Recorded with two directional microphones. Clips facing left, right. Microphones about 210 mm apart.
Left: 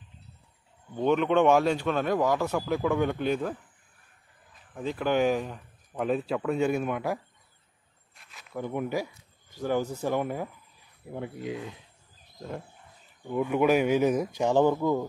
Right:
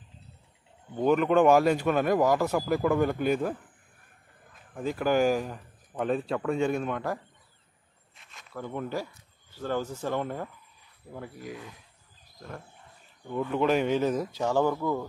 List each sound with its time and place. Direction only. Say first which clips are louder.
0.9 s speech: right 1 dB; centre (ahead or behind)
4.7 s speech: right 1 dB; 5° right (ahead or behind)
8.1 s a sound: even; centre (ahead or behind)
8.5 s speech: left 3 dB; 15° left (ahead or behind)
11.1 s speech: left 5 dB; 20° left (ahead or behind)